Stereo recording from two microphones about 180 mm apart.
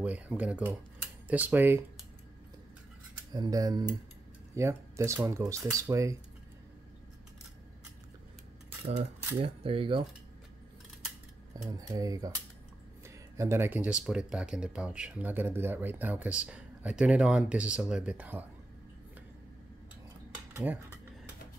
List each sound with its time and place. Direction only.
0.0 s speech: 10° right (ahead or behind)
3.3 s speech: 20° right (ahead or behind)
9.4 s speech: 30° right (ahead or behind)
11.5 s speech: 20° right (ahead or behind)
13.4 s speech: 15° right (ahead or behind)
20.5 s speech: 10° right (ahead or behind)